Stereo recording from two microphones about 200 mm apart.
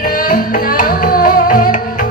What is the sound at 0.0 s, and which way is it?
Music, 45° left (ahead or behind).